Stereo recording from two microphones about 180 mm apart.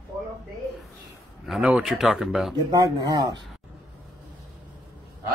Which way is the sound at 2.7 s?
20° right (ahead or behind).